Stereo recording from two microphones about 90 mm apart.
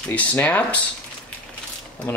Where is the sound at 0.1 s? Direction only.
15° left (ahead or behind).